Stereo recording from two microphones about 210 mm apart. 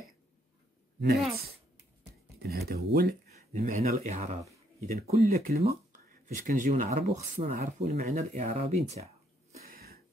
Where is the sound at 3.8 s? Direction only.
30° right (ahead or behind).